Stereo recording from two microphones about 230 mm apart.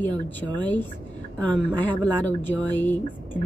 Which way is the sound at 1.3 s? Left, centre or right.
Centre.